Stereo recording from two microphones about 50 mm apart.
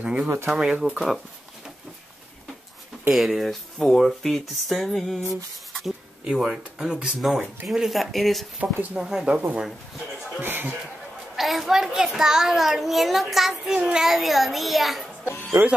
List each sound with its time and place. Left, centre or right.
0.0 s speech: right
0.9 s speech: centre
3.1 s speech: centre
5.7 s a sound: centre
6.2 s speech: centre
7.2 s speech: centre
8.9 s speech: centre
10.4 s a man's voice: right
11.3 s speech: centre
13.7 s speech: centre
14.1 s speech: centre
15.6 s speech: right